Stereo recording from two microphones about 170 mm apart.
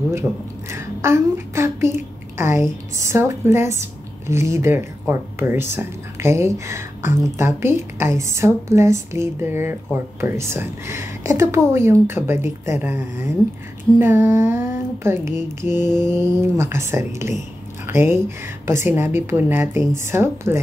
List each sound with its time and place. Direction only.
0.7 s a woman's voice: 15° right (ahead or behind)